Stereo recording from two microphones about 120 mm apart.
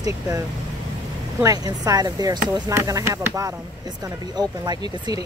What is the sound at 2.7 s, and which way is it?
Speech, 25° right (ahead or behind).